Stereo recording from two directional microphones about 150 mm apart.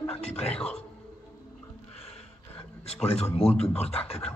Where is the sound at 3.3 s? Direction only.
45° left (ahead or behind).